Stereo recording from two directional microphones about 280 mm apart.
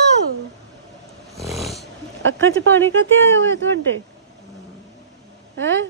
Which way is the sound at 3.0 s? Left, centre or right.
Right.